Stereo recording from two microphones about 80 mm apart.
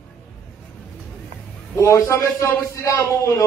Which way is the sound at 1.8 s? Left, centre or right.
Left.